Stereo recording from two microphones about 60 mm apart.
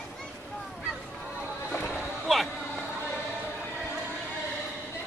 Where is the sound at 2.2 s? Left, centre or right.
Centre.